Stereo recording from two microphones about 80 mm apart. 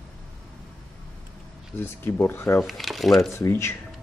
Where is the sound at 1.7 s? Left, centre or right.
Left.